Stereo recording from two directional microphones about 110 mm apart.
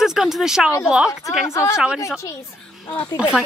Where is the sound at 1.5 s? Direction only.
25° left (ahead or behind).